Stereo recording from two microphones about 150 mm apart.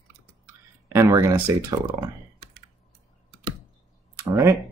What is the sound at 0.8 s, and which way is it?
Speech, 15° right (ahead or behind).